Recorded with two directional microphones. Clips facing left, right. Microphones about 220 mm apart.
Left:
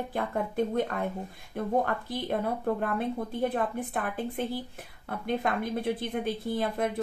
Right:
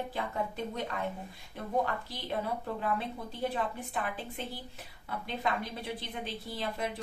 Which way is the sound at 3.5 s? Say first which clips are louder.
Left 5 dB; 50° left (ahead or behind).